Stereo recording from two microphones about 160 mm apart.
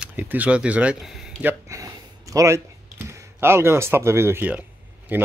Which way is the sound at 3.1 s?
15° right (ahead or behind).